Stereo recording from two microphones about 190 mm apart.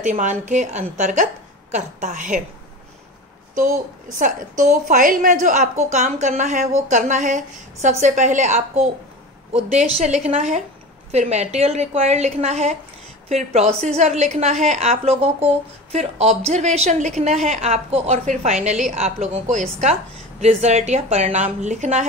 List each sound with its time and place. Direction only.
0.0 s a woman's voice: 40° right (ahead or behind)
4.2 s a woman's voice: 45° right (ahead or behind)